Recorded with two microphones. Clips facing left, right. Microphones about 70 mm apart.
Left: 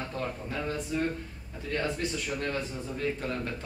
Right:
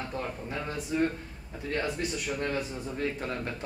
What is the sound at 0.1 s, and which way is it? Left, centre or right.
Speech, centre.